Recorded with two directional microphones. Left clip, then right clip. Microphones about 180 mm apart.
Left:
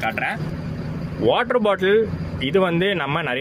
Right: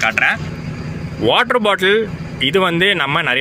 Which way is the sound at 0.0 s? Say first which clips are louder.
Right 9 dB; 5° left (ahead or behind).